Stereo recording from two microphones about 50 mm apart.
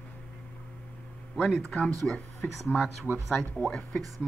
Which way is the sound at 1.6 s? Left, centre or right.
Left.